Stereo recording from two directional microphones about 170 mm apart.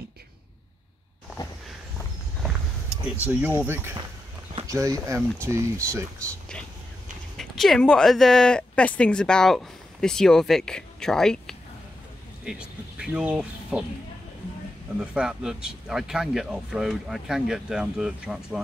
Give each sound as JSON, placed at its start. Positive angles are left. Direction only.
{"t": 2.4, "sound": "vehicle", "side_deg": -5}
{"t": 3.5, "sound": "speech", "side_deg": -15}
{"t": 7.3, "sound": "speech", "side_deg": 0}
{"t": 15.0, "sound": "speech", "side_deg": -5}